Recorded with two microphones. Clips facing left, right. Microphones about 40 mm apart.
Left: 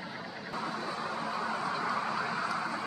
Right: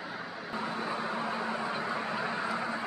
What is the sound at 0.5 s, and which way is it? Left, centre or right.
Vehicle, right.